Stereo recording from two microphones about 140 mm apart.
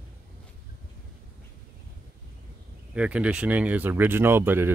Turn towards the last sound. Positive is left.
turn(degrees=-15)  # may be behind; listen again after turning